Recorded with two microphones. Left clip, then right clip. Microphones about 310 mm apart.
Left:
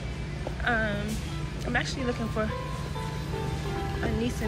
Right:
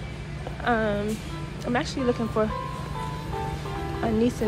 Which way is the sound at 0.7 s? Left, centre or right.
Centre.